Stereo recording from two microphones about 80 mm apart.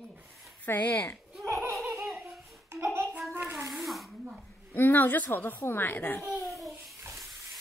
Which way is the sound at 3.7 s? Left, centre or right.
Centre.